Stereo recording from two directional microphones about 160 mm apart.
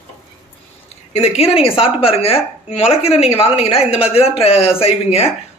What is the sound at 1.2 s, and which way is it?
A woman's voice, 40° left (ahead or behind).